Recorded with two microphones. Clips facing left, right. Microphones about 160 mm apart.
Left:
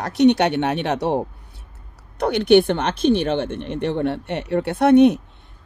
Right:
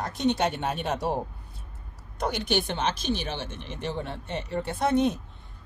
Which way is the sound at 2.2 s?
65° left (ahead or behind).